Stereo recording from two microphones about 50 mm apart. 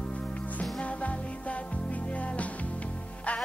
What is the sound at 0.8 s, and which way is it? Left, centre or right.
Music, left.